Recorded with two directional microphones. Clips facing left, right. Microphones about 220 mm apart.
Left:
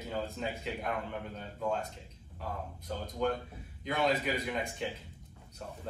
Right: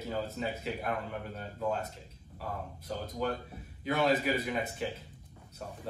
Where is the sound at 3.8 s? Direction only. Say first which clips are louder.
Right 2 dB; 5° right (ahead or behind).